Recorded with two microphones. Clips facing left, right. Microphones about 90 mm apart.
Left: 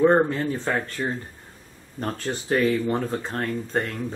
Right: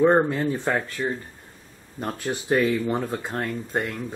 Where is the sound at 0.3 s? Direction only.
20° right (ahead or behind).